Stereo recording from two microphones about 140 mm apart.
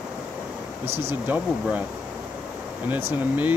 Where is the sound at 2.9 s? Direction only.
15° right (ahead or behind).